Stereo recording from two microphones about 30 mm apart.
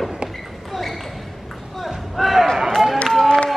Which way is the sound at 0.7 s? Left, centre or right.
Centre.